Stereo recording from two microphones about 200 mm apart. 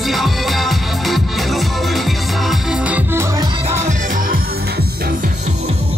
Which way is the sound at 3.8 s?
40° right (ahead or behind).